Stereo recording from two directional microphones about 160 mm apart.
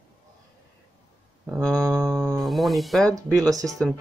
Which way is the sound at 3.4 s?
20° right (ahead or behind).